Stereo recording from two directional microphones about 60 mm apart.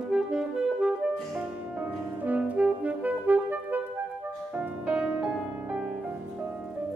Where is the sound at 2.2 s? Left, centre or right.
Right.